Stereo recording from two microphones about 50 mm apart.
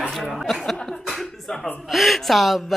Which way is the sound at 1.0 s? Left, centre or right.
Centre.